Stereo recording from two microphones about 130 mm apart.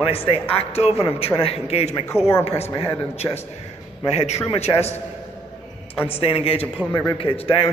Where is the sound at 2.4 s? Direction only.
55° left (ahead or behind).